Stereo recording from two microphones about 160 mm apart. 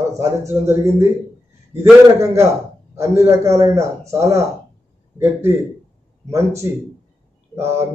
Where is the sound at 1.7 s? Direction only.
15° right (ahead or behind).